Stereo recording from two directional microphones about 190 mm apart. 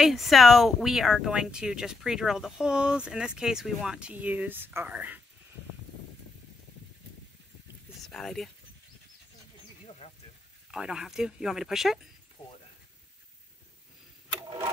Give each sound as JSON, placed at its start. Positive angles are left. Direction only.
{"t": 0.0, "sound": "speech", "side_deg": 0}
{"t": 8.1, "sound": "speech", "side_deg": 0}
{"t": 9.8, "sound": "snake", "side_deg": 35}
{"t": 10.7, "sound": "speech", "side_deg": -5}
{"t": 12.4, "sound": "speech", "side_deg": 25}
{"t": 14.3, "sound": "a sound", "side_deg": -20}